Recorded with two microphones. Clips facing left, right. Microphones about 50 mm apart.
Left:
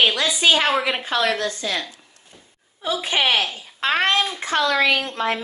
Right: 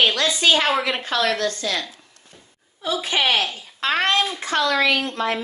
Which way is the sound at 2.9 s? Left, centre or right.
Centre.